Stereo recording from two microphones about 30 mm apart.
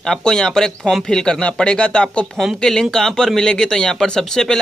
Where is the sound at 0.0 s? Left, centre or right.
Centre.